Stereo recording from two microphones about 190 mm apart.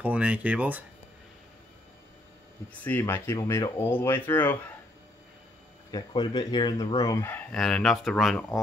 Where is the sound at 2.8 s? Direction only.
10° left (ahead or behind).